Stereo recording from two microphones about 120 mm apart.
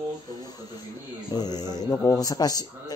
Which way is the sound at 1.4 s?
35° left (ahead or behind).